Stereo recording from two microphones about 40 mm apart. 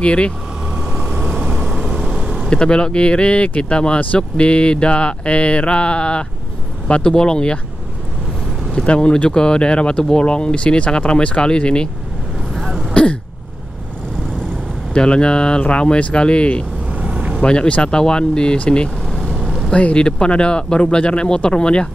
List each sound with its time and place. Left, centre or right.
0.0 s speech: left
0.7 s vehicle: centre
2.5 s speech: left
8.7 s speech: left
12.5 s throat clearing: centre
12.9 s throat clearing: left
15.0 s speech: left
16.9 s vehicle: right
17.4 s speech: left
19.1 s vehicle: centre
19.7 s speech: left